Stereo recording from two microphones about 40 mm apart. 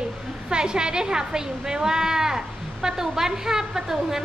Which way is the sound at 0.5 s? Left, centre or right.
Right.